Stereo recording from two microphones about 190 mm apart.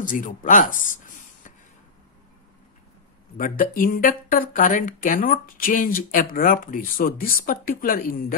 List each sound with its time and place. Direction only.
0.0 s speech: 45° left (ahead or behind)
3.3 s speech: 45° left (ahead or behind)